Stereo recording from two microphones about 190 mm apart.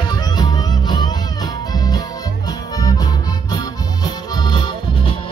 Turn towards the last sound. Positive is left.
turn(degrees=20)  # may be behind; listen again after turning